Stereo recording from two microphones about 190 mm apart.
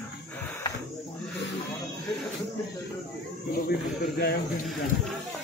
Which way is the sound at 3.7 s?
55° left (ahead or behind).